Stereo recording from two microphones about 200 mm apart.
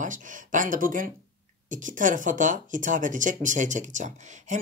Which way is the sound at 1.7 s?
40° right (ahead or behind).